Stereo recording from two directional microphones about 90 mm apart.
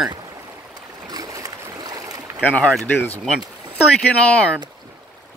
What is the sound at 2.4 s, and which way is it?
Speech, 15° left (ahead or behind).